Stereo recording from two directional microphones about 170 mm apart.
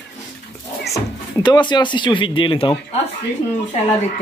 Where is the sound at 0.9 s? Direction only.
25° left (ahead or behind).